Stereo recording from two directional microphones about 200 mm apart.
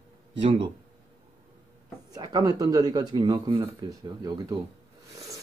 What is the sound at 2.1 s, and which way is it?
Speech, 20° right (ahead or behind).